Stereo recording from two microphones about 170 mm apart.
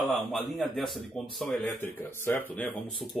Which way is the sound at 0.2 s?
Centre (ahead or behind).